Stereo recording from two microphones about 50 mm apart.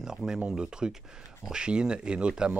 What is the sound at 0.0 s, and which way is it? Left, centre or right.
Speech, centre.